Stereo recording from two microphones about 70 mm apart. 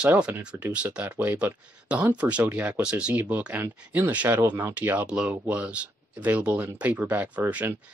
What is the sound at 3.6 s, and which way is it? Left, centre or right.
Speech, right.